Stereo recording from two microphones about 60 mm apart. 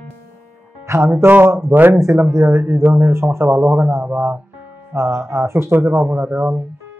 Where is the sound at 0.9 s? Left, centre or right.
Right.